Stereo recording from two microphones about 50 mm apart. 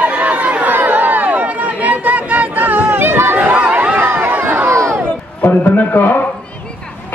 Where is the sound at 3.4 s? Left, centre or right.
Right.